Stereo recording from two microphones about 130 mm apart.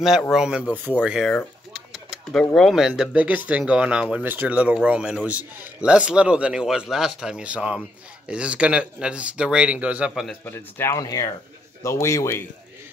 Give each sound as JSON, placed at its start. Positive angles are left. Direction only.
{"t": 0.3, "sound": "speech", "side_deg": -5}
{"t": 10.4, "sound": "speech", "side_deg": 20}
{"t": 11.0, "sound": "a man's voice", "side_deg": 30}